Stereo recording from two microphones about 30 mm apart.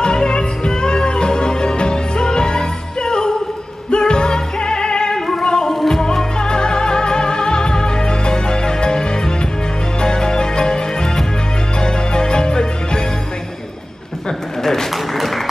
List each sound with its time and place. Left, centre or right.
0.0 s music: left
5.7 s music: centre
5.9 s music: left
14.6 s a sound: centre